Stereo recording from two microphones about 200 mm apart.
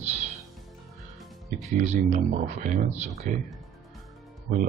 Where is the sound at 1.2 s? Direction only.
Centre (ahead or behind).